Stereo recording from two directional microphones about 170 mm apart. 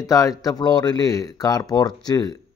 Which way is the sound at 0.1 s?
20° left (ahead or behind).